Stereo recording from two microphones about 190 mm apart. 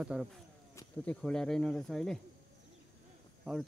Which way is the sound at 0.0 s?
5° right (ahead or behind).